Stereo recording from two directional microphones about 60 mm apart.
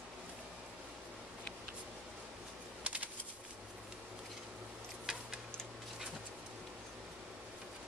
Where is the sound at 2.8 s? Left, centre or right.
Right.